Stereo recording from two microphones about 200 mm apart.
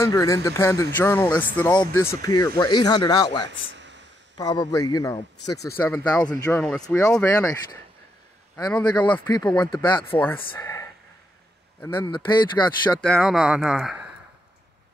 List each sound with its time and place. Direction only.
0.0 s speech: 15° left (ahead or behind)
3.7 s a sound: 65° right (ahead or behind)
4.4 s speech: 20° left (ahead or behind)
8.8 s speech: 20° left (ahead or behind)
10.1 s speech: 10° left (ahead or behind)
13.0 s speech: centre (ahead or behind)